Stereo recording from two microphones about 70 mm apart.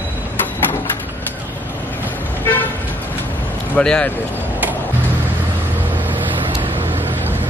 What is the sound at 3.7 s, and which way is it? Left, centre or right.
Speech, centre.